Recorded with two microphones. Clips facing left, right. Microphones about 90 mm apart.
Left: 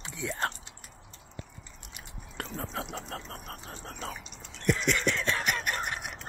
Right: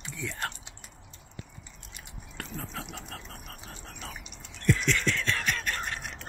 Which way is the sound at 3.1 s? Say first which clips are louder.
Left 4 dB; 40° left (ahead or behind).